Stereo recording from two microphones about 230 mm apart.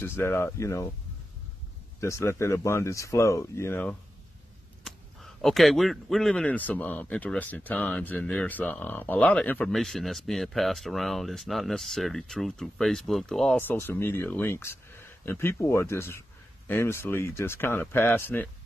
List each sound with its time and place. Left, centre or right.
0.0 s speech: centre
2.0 s speech: centre